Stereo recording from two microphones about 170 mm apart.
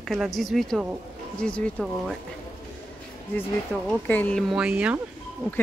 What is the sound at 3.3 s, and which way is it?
Speech, 10° left (ahead or behind).